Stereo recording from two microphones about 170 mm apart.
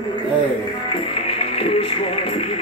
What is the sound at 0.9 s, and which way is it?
Speech, 30° left (ahead or behind).